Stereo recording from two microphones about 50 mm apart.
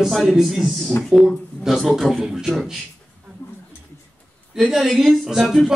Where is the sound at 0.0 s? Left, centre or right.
Centre.